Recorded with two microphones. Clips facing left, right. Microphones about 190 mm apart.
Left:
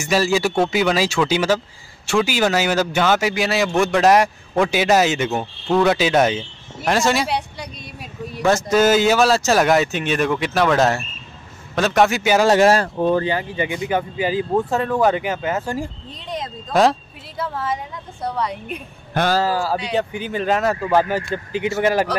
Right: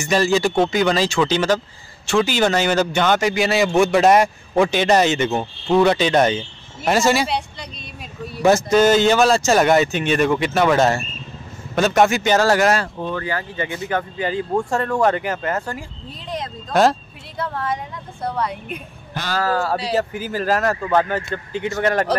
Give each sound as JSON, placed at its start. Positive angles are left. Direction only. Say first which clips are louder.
{"t": 0.0, "sound": "a man's voice", "louder": "right 1 dB", "side_deg": 5}
{"t": 12.4, "sound": "speech", "louder": "left 3 dB", "side_deg": 25}
{"t": 12.8, "sound": "speech", "louder": "left 8 dB", "side_deg": 40}
{"t": 13.2, "sound": "a man's voice", "louder": "left 3 dB", "side_deg": 20}
{"t": 19.2, "sound": "speech", "louder": "left 10 dB", "side_deg": 55}
{"t": 20.0, "sound": "a man's voice", "louder": "even", "side_deg": 0}
{"t": 21.2, "sound": "speech", "louder": "left 2 dB", "side_deg": -25}
{"t": 21.7, "sound": "speech", "louder": "left 1 dB", "side_deg": 5}